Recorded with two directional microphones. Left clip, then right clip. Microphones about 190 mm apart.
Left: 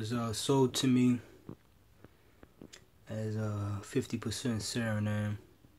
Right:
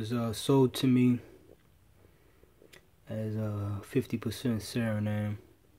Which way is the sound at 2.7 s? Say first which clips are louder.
Right 3 dB; 15° right (ahead or behind).